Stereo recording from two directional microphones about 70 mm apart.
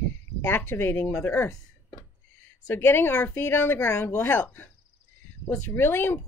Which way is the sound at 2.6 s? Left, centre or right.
Left.